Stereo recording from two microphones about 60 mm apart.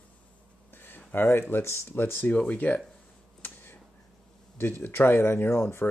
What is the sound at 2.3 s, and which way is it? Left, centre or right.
Speech, left.